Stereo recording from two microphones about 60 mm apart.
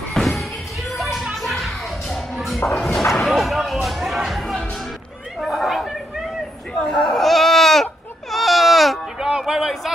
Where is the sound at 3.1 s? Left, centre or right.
Centre.